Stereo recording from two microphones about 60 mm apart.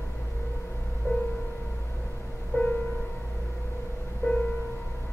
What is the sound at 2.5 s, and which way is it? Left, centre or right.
Music, left.